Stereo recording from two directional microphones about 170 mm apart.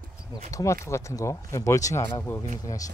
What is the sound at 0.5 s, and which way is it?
Speech, 15° left (ahead or behind).